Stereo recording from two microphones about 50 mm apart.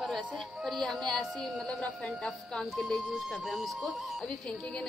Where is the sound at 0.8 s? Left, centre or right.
Centre.